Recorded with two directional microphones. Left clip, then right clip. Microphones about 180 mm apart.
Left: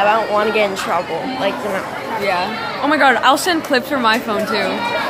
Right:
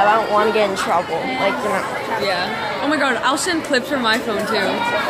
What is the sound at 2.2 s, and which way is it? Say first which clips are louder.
Speech: left 4 dB; 45° left (ahead or behind).